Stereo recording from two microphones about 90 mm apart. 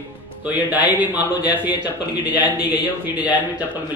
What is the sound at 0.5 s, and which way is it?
A man's voice, 20° right (ahead or behind).